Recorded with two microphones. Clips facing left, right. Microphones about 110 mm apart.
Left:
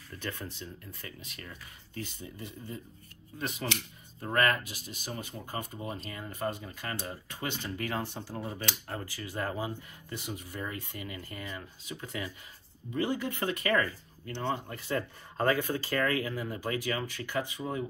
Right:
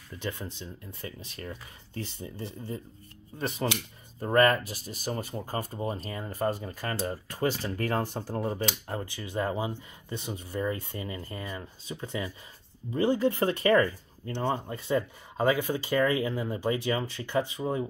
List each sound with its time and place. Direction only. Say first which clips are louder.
0.1 s speech: right 3 dB; 15° right (ahead or behind)
1.0 s speech: right 8 dB; 35° right (ahead or behind)
15.3 s speech: right 2 dB; 10° right (ahead or behind); by 17.8 s 30° right (ahead or behind)